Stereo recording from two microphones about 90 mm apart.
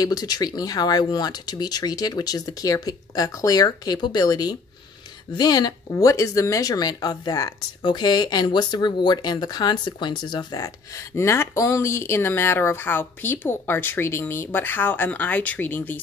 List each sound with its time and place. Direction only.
0.0 s speech: 45° left (ahead or behind)
10.6 s speech: 35° left (ahead or behind)